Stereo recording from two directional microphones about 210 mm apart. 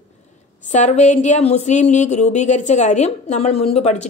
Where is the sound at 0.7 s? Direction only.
35° left (ahead or behind).